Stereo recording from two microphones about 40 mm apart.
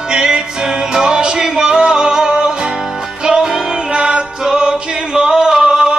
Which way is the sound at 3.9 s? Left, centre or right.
Right.